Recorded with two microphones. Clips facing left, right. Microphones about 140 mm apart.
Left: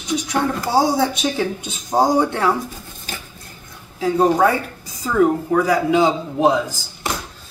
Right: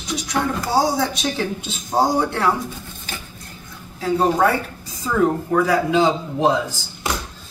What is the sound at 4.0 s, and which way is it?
Speech, 10° left (ahead or behind).